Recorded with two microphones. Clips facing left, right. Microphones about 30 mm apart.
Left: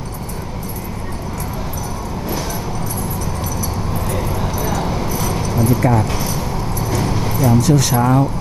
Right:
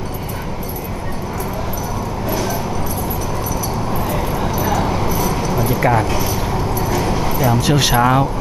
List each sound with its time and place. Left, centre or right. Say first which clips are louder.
3.9 s a sound: right 2 dB; centre
6.0 s keys jangling: right 2 dB; centre
7.6 s speech: right 1 dB; right